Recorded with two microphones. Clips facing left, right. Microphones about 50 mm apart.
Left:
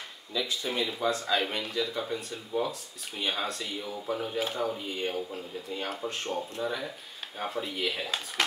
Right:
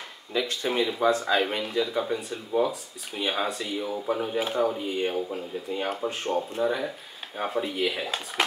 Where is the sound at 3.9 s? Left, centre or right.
Centre.